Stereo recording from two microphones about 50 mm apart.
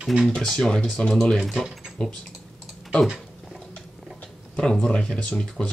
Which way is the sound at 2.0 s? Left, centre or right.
Centre.